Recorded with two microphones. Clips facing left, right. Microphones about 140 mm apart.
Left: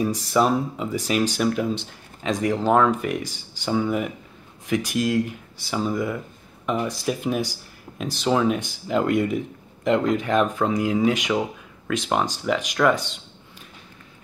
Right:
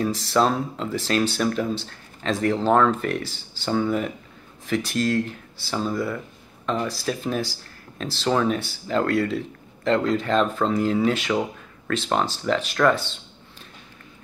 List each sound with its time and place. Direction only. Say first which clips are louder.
0.3 s speech: left 1 dB; 10° left (ahead or behind)